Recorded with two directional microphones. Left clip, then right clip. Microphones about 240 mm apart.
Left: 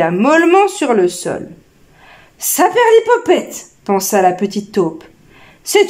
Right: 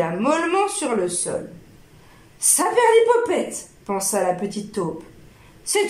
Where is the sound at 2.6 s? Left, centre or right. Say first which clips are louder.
Left 6 dB; left.